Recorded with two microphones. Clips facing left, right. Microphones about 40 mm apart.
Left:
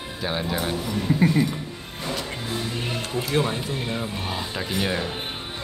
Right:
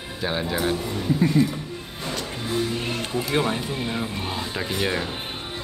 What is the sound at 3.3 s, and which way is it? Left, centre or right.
A man's voice, centre.